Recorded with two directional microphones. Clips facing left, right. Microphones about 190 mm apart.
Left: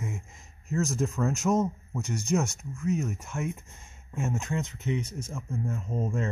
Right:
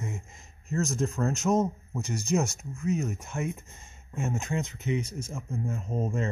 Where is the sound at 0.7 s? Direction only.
5° left (ahead or behind).